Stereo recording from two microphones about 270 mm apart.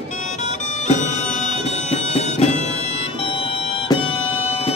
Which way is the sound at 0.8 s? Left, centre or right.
Left.